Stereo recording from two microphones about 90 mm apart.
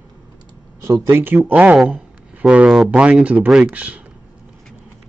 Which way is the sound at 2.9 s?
15° right (ahead or behind).